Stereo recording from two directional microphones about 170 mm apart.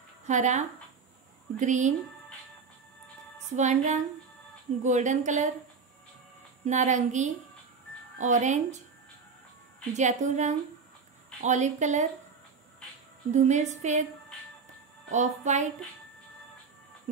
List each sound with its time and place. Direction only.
0.3 s a woman's voice: 45° right (ahead or behind)
3.5 s a woman's voice: 45° right (ahead or behind)
6.6 s a woman's voice: 45° right (ahead or behind)
9.9 s a woman's voice: 45° right (ahead or behind)
13.3 s a woman's voice: 45° right (ahead or behind)
15.0 s a woman's voice: 45° right (ahead or behind)